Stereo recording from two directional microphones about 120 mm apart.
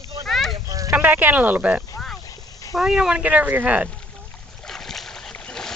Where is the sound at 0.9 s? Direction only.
15° right (ahead or behind).